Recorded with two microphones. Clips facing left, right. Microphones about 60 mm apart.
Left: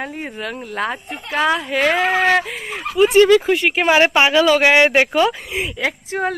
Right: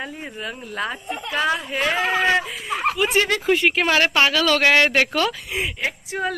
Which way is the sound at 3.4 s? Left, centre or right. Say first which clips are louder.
Left 1 dB; centre.